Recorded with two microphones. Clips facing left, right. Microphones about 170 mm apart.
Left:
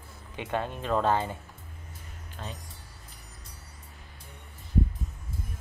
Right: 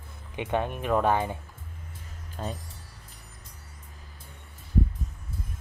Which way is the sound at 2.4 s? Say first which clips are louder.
Right 6 dB; 35° right (ahead or behind).